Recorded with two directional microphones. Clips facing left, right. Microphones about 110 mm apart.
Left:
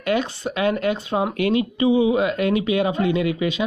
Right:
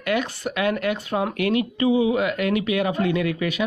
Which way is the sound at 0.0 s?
25° left (ahead or behind).